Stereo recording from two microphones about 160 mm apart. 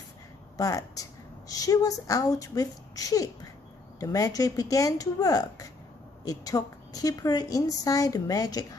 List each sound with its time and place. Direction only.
0.6 s a woman's voice: 20° left (ahead or behind)